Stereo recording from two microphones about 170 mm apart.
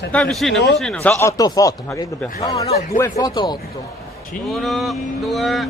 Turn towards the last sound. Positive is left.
turn(degrees=0)  # may be behind; listen again after turning